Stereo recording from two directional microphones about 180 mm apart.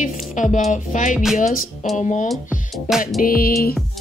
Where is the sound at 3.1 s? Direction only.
55° left (ahead or behind).